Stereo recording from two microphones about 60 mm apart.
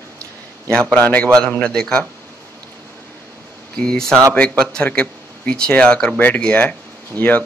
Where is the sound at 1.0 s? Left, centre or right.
Left.